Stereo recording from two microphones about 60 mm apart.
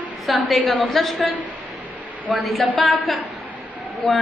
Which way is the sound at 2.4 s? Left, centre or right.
Centre.